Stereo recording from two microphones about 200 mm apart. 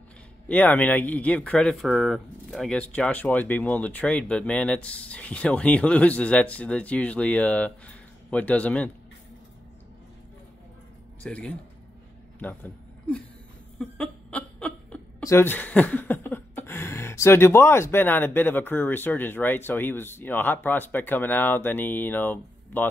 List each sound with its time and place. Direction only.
0.5 s speech: 10° left (ahead or behind)
11.2 s speech: 5° left (ahead or behind)
12.4 s a sound: 10° left (ahead or behind)
13.7 s speech: 5° left (ahead or behind)